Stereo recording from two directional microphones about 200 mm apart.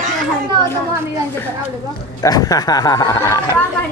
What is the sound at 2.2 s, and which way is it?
Speech, 20° left (ahead or behind).